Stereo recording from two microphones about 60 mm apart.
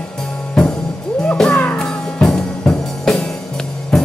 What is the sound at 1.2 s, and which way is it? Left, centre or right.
Music, centre.